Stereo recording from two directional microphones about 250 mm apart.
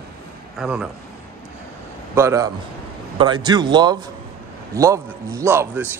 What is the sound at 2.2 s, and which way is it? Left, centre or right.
A man's voice, centre.